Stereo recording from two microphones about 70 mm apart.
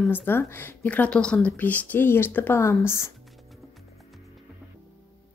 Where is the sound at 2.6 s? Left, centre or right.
Left.